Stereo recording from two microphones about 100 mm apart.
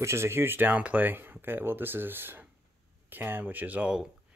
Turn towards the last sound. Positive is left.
turn(degrees=-15)  # may be behind; listen again after turning